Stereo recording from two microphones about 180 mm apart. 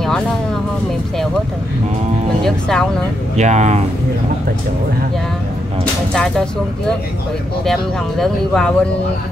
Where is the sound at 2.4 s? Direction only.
5° left (ahead or behind).